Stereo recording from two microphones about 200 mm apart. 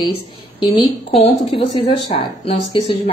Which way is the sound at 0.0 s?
25° left (ahead or behind).